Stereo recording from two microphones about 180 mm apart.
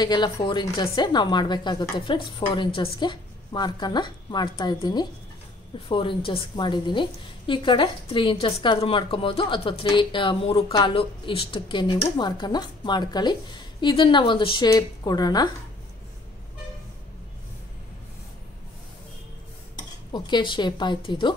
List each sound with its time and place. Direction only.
0.0 s a woman's voice: 25° left (ahead or behind)
20.1 s a woman's voice: 25° left (ahead or behind)